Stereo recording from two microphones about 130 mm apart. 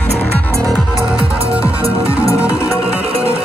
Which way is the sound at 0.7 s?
Centre (ahead or behind).